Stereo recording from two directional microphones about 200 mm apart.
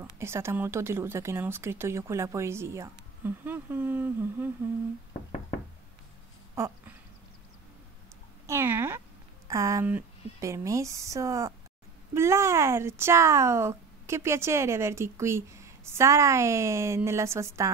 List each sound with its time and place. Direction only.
0.0 s speech: 15° right (ahead or behind)
8.5 s speech: 10° right (ahead or behind)